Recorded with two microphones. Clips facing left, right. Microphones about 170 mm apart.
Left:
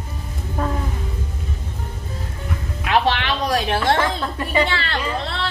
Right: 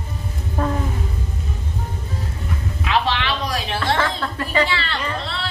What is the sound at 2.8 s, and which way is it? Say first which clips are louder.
Speech: left 2 dB; 50° left (ahead or behind).